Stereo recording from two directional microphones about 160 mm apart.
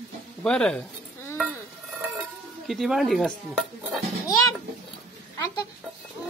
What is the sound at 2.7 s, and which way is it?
Dishes, centre (ahead or behind).